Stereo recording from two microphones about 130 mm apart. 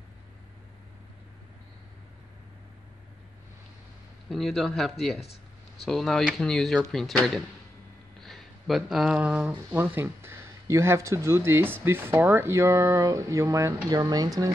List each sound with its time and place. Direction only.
4.3 s speech: centre (ahead or behind); by 14.5 s 30° right (ahead or behind)